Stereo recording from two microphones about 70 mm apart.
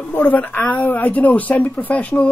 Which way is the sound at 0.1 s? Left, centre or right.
Left.